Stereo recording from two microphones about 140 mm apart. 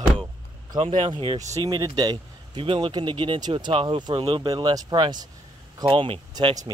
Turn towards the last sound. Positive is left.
turn(degrees=-40)  # may be behind; listen again after turning